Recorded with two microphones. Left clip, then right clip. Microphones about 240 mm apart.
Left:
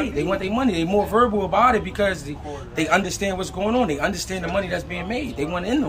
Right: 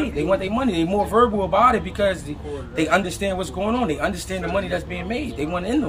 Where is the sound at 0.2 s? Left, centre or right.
Centre.